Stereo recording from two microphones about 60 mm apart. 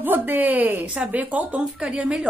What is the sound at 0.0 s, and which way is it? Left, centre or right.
A woman's voice, right.